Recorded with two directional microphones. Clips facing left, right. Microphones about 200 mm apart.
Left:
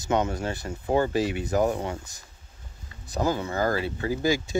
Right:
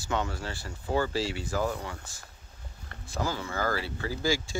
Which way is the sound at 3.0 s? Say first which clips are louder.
Left 6 dB; 20° left (ahead or behind).